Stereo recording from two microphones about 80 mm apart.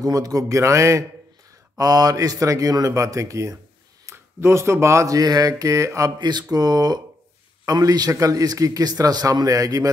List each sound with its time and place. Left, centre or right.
0.0 s speech: right
1.8 s a man's voice: right
6.1 s a sound: right
6.5 s a man's voice: right